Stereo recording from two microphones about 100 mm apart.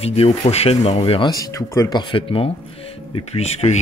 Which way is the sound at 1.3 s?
35° left (ahead or behind).